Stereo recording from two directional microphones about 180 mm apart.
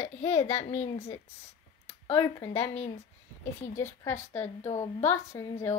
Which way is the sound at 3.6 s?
15° left (ahead or behind).